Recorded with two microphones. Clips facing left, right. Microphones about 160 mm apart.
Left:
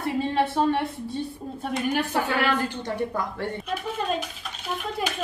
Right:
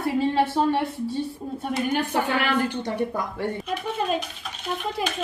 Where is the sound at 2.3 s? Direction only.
15° right (ahead or behind).